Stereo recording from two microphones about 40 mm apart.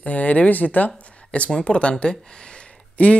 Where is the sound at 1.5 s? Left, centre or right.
Left.